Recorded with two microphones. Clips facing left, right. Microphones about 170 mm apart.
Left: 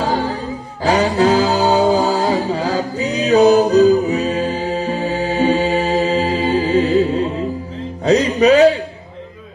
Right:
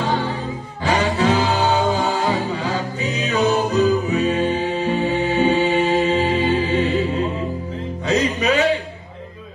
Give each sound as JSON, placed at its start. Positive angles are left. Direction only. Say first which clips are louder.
{"t": 0.0, "sound": "music", "louder": "left 3 dB", "side_deg": 35}